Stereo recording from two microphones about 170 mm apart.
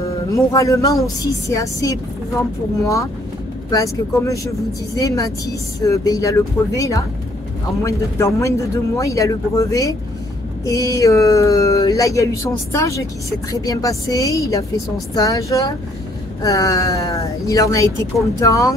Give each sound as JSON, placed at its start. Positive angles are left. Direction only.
{"t": 0.3, "sound": "speech", "side_deg": 20}
{"t": 3.7, "sound": "speech", "side_deg": 20}